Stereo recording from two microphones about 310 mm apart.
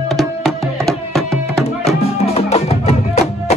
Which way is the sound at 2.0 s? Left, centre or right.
Centre.